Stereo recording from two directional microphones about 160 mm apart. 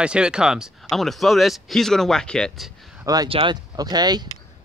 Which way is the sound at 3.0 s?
25° right (ahead or behind).